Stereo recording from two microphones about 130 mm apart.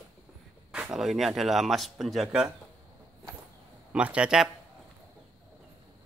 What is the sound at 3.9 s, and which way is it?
Speech, 10° right (ahead or behind).